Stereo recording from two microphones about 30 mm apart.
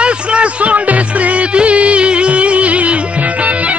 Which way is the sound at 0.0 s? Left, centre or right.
Right.